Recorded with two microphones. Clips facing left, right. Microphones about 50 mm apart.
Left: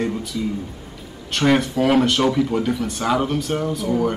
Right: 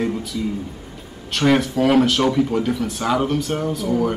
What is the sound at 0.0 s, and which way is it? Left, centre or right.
Speech, centre.